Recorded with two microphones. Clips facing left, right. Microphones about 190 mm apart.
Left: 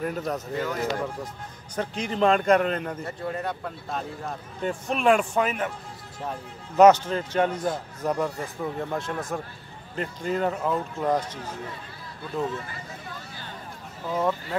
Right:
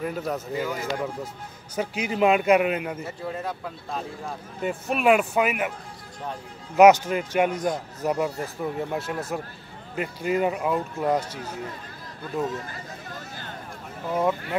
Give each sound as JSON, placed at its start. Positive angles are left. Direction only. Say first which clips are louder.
{"t": 0.0, "sound": "speech", "louder": "even", "side_deg": -5}
{"t": 6.8, "sound": "speech", "louder": "right 1 dB", "side_deg": -10}
{"t": 13.1, "sound": "a sound", "louder": "right 2 dB", "side_deg": -50}